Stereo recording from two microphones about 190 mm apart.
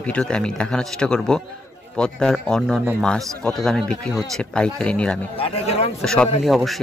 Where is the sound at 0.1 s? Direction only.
5° left (ahead or behind).